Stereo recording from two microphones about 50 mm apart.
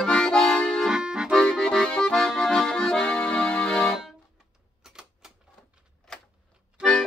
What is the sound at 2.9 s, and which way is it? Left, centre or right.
Accordion, left.